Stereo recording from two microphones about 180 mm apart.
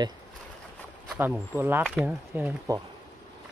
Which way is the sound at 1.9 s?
Centre (ahead or behind).